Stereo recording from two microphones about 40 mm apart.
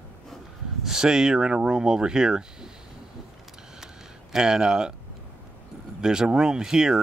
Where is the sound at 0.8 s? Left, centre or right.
Centre.